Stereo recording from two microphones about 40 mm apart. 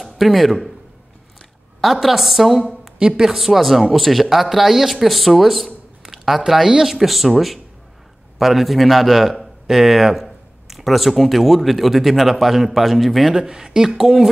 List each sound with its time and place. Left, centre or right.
0.0 s speech: centre
1.8 s speech: centre
3.0 s speech: right
3.3 s speech: centre
13.4 s speech: centre